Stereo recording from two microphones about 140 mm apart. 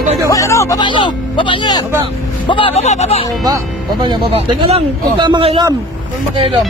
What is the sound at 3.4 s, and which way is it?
Speech, 30° right (ahead or behind).